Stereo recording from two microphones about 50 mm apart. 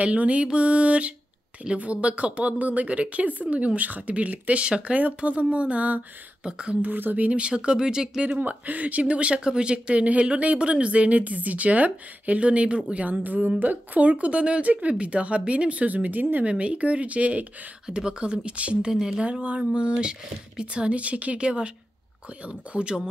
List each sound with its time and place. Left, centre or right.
0.0 s speech: right
8.3 s speech: right
17.8 s speech: centre
18.8 s speech: centre
19.4 s speech: right